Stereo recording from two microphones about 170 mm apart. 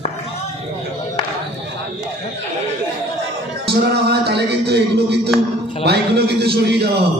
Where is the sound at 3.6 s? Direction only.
70° right (ahead or behind).